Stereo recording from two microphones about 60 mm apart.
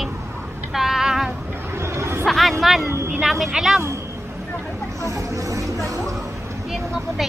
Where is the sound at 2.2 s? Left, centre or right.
Centre.